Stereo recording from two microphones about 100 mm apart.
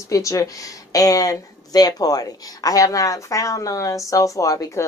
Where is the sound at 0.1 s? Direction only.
35° left (ahead or behind).